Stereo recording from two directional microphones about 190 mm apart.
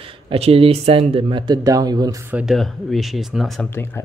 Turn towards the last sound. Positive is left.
turn(degrees=0)  # may be behind; listen again after turning